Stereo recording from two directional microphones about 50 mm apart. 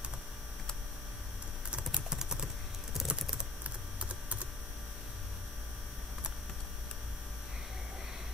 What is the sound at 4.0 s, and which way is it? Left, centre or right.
Typing, right.